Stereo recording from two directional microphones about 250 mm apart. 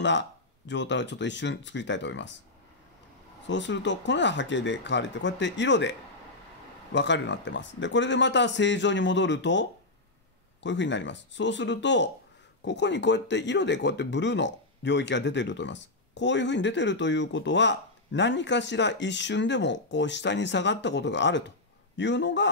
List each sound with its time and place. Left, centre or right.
0.0 s speech: left
3.4 s speech: left